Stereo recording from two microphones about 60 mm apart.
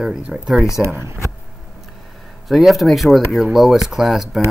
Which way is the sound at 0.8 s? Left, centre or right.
Right.